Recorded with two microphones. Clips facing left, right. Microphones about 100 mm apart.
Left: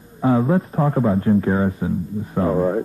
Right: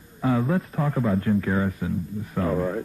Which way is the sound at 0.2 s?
30° left (ahead or behind).